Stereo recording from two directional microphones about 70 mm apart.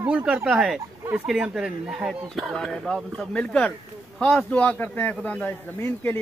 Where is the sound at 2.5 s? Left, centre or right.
Centre.